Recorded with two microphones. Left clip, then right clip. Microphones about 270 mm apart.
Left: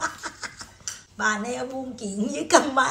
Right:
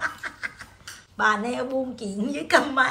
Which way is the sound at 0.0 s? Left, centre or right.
Centre.